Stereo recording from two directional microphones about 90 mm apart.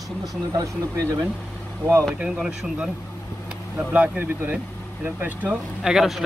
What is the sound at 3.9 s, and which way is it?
Speech, 15° right (ahead or behind).